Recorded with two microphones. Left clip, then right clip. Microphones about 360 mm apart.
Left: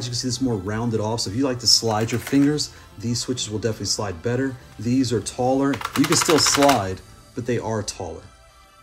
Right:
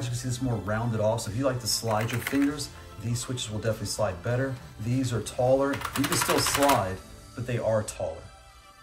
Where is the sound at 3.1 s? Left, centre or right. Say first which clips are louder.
Left 8 dB; centre.